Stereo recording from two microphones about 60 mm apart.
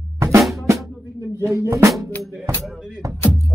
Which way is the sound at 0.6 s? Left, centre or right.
Right.